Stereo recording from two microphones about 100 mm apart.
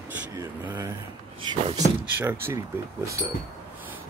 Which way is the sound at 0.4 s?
20° right (ahead or behind).